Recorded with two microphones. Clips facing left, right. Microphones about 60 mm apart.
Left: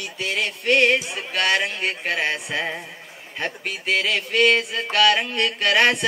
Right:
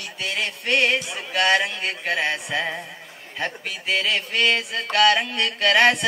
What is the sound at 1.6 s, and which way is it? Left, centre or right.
Music, left.